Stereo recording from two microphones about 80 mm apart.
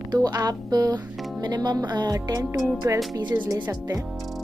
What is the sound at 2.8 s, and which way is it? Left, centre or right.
Speech, right.